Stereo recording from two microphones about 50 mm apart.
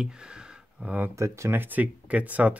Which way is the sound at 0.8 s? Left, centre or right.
Right.